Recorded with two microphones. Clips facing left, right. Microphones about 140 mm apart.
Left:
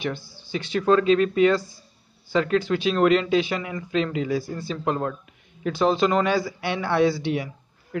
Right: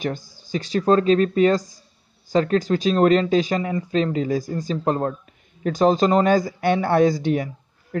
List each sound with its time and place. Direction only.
0.0 s a man's voice: 45° right (ahead or behind)